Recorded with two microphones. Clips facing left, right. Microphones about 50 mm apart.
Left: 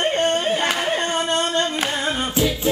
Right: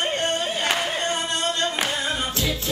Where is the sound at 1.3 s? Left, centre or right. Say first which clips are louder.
Left 5 dB; left.